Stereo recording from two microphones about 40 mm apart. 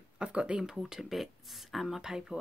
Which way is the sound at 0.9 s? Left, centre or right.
Centre.